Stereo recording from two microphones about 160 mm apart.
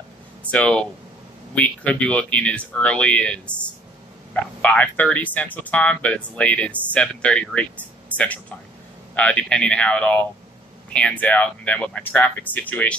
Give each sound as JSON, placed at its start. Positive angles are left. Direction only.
{"t": 0.5, "sound": "speech", "side_deg": 10}